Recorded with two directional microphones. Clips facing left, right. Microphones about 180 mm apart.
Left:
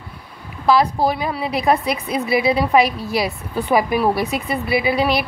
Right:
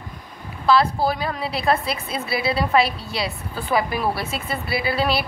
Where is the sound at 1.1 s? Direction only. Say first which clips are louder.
Left 4 dB; 15° left (ahead or behind).